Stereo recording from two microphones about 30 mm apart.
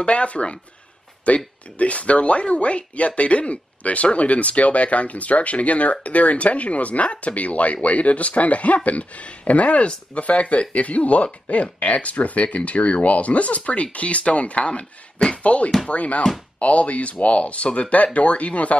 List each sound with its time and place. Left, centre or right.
0.0 s speech: left
15.4 s speech: left